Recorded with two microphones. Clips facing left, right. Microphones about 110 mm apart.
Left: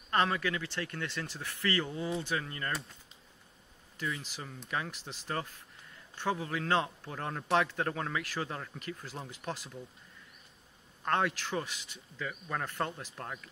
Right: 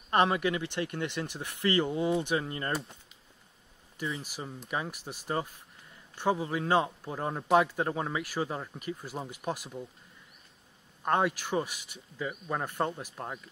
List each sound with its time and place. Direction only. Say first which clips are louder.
0.1 s speech: right 4 dB; 20° right (ahead or behind)
4.0 s a man's voice: right 2 dB; 10° right (ahead or behind)
11.1 s a man's voice: right 3 dB; 15° right (ahead or behind)